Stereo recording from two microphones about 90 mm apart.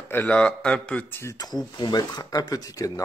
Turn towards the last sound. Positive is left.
turn(degrees=40)  # may be behind; listen again after turning